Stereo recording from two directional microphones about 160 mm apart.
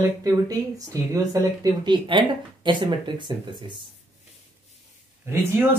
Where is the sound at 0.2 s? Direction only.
20° right (ahead or behind).